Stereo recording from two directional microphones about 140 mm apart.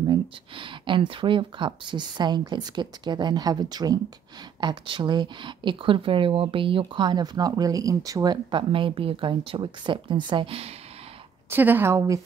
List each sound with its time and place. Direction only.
0.0 s speech: 35° right (ahead or behind)
11.5 s speech: 15° right (ahead or behind)